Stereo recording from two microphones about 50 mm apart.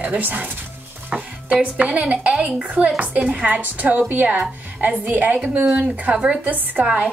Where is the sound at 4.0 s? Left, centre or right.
Right.